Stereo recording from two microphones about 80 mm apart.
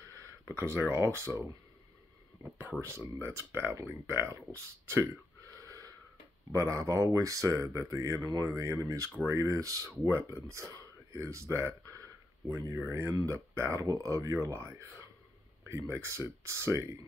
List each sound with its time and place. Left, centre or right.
0.5 s speech: right
3.0 s speech: right
4.5 s a sound: right
6.5 s speech: right